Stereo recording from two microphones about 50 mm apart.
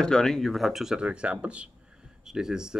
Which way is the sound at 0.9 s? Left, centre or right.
Centre.